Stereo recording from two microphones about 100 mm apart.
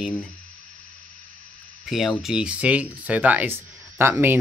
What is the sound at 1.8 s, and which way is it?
Speech, centre (ahead or behind).